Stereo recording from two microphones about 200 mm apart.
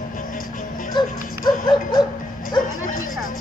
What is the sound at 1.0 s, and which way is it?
Dog, 20° left (ahead or behind).